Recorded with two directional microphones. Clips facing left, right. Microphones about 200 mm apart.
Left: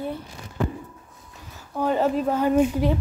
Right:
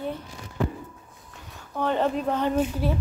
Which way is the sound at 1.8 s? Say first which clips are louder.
Left 3 dB; 5° left (ahead or behind).